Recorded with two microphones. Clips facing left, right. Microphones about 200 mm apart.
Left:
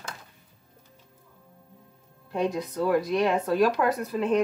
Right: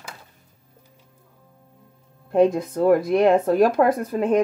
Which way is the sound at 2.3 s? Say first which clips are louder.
Right 9 dB; 50° right (ahead or behind).